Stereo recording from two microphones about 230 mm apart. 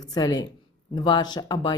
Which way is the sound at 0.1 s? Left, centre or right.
Centre.